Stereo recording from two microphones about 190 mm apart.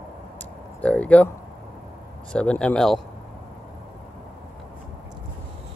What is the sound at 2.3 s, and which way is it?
Speech, 5° left (ahead or behind).